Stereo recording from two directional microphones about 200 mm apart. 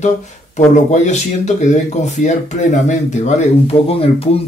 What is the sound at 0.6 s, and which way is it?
Speech, 35° left (ahead or behind).